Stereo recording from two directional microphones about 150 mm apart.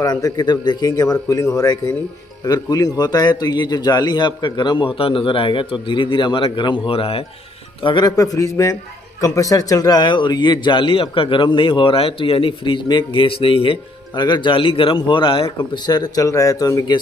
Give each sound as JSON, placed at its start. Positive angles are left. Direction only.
{"t": 0.0, "sound": "a man's voice", "side_deg": 25}
{"t": 7.8, "sound": "a man's voice", "side_deg": 30}